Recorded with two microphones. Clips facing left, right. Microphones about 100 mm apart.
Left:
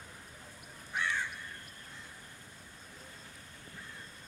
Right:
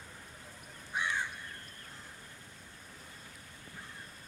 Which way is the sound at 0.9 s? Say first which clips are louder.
Even; 15° right (ahead or behind).